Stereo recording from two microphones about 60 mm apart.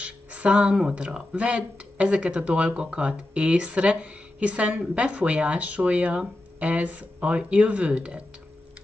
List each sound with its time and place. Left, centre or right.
0.0 s speech: right